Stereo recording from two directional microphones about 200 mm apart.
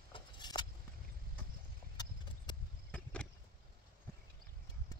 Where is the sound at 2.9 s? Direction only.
5° left (ahead or behind).